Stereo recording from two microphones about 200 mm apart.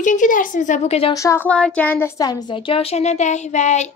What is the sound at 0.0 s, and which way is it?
A woman's voice, 40° left (ahead or behind).